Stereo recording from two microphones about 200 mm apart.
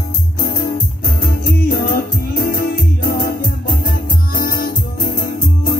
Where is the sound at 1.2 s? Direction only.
50° left (ahead or behind).